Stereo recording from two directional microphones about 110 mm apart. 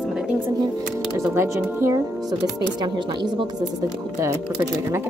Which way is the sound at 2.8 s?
45° right (ahead or behind).